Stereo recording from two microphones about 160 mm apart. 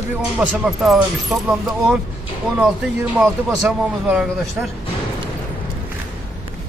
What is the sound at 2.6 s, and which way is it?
Speech, 10° right (ahead or behind).